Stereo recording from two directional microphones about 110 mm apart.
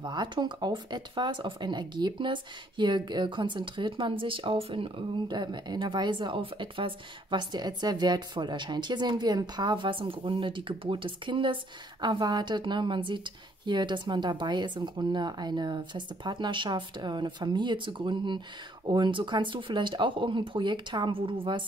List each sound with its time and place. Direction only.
0.0 s speech: 45° right (ahead or behind)